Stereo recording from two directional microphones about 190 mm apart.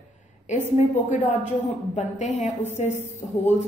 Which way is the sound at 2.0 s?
35° left (ahead or behind).